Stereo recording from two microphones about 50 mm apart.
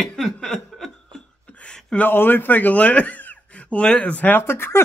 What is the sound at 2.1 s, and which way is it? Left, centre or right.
Speech, left.